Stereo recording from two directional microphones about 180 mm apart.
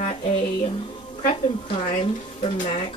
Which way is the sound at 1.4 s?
40° left (ahead or behind).